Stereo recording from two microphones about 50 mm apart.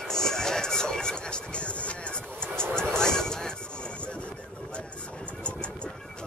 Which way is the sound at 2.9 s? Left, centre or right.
Centre.